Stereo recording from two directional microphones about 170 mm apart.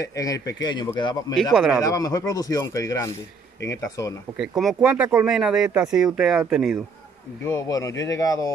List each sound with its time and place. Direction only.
0.0 s speech: 20° left (ahead or behind)
1.3 s speech: centre (ahead or behind)
1.8 s speech: 20° left (ahead or behind)
4.4 s speech: centre (ahead or behind)
7.4 s speech: 20° left (ahead or behind)